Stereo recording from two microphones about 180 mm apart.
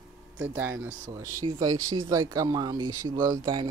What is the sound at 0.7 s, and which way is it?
Speech, 90° right.